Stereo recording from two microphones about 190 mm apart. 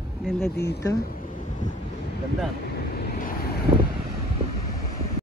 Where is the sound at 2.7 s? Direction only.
55° left (ahead or behind).